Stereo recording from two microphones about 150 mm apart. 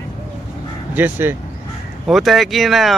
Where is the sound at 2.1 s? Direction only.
Centre (ahead or behind).